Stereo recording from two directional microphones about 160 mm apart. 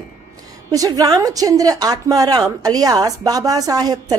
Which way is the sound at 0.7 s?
25° right (ahead or behind).